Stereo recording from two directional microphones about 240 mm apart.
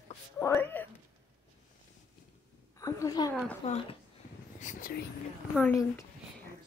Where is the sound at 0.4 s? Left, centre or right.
Centre.